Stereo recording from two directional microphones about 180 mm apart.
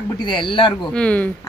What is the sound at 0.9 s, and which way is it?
Speech, 5° left (ahead or behind).